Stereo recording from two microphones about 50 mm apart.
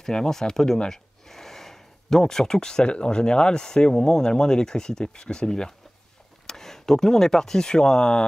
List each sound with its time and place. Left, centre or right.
0.0 s speech: centre